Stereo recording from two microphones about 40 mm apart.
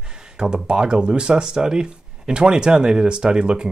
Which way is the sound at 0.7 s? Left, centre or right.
Right.